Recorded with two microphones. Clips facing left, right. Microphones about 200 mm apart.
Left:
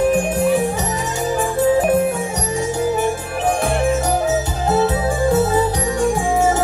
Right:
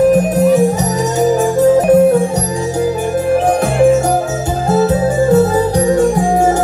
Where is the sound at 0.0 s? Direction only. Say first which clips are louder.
Right 6 dB; 40° right (ahead or behind).